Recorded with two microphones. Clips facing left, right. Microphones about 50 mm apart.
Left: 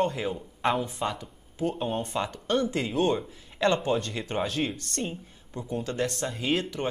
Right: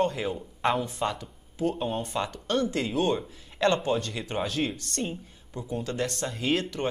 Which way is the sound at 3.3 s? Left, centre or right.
Left.